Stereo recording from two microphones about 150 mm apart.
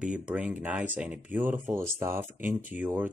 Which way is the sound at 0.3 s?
10° right (ahead or behind).